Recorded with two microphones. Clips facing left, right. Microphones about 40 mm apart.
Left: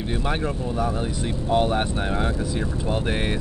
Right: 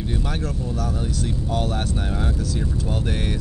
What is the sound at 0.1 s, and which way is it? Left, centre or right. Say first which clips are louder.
Speech: left 4 dB; left.